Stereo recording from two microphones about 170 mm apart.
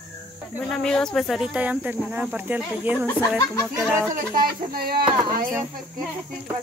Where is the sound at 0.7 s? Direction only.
5° left (ahead or behind).